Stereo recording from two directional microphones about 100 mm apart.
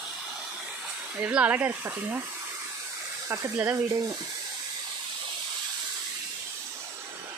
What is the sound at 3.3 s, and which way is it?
Speech, 25° right (ahead or behind).